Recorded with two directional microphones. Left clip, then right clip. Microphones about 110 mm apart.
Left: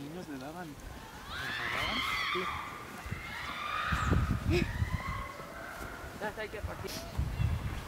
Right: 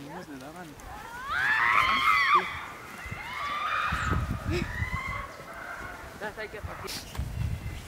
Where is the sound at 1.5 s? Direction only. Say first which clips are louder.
Right 11 dB; 30° right (ahead or behind).